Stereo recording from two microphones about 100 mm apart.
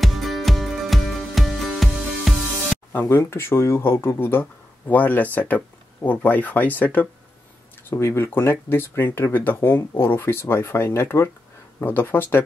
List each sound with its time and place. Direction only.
0.0 s music: centre (ahead or behind)
2.9 s speech: 25° left (ahead or behind)